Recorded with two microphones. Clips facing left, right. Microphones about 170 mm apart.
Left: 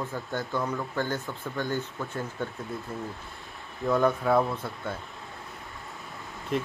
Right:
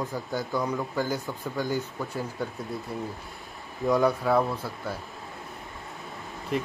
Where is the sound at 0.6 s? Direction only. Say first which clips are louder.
Right 2 dB; 15° right (ahead or behind).